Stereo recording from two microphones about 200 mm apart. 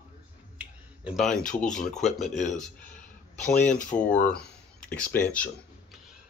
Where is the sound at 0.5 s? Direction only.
5° right (ahead or behind).